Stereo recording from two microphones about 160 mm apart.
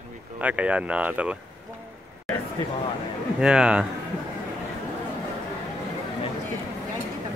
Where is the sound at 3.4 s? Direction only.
5° right (ahead or behind).